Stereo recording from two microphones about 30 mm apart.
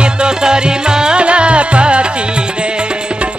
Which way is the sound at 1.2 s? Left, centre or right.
Right.